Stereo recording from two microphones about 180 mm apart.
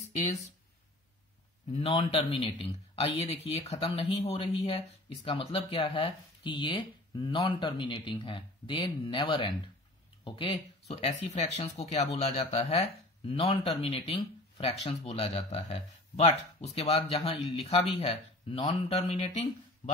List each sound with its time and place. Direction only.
1.7 s speech: 35° left (ahead or behind)